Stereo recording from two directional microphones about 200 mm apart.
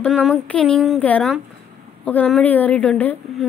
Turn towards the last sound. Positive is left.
turn(degrees=5)  # may be behind; listen again after turning